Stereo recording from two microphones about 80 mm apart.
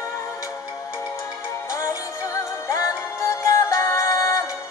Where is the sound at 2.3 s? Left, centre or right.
Left.